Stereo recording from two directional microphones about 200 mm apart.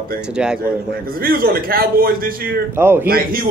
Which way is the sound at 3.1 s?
45° right (ahead or behind).